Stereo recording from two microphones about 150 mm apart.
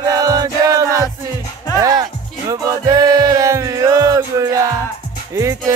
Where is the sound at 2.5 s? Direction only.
25° right (ahead or behind).